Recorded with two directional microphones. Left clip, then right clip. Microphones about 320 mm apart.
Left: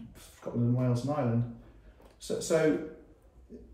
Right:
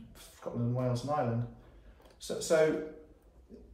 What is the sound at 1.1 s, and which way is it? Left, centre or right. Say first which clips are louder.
Speech: right 2 dB; centre.